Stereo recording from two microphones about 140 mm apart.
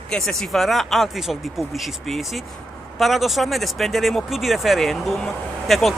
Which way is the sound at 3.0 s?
Centre (ahead or behind).